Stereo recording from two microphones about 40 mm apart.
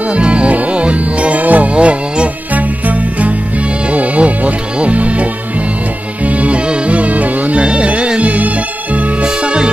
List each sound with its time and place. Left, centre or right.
0.1 s music: right
9.2 s music: right